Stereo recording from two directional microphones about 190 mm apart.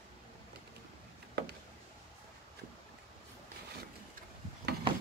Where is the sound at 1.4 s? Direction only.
55° right (ahead or behind).